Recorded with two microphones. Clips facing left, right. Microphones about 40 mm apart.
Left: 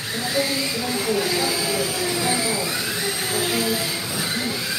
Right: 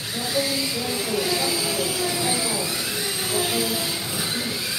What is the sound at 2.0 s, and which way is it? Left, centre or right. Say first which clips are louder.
Music: left 2 dB; centre.